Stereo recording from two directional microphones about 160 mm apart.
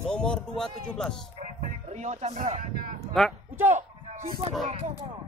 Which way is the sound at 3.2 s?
Centre (ahead or behind).